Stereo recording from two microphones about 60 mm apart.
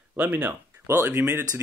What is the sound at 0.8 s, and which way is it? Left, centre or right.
Speech, right.